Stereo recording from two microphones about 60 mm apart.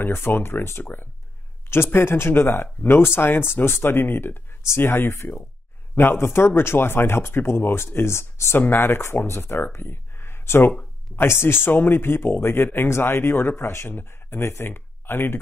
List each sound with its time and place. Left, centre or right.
0.0 s speech: left
8.5 s speech: left